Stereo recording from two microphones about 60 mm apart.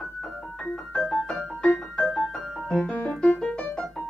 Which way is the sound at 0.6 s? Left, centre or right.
Centre.